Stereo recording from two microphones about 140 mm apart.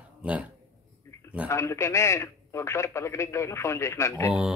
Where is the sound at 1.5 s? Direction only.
20° left (ahead or behind).